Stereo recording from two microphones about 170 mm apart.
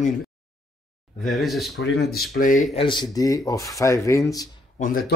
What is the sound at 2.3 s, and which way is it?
Speech, 50° left (ahead or behind).